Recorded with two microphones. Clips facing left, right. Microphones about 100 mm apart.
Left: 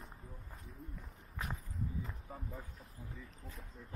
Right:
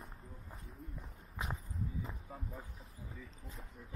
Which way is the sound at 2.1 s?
Centre (ahead or behind).